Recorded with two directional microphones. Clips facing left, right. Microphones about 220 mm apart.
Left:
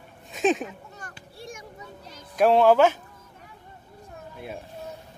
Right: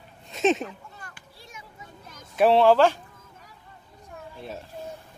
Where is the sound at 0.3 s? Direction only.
Centre (ahead or behind).